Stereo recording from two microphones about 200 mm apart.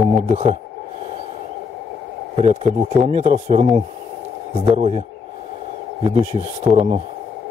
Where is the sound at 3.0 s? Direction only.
35° right (ahead or behind).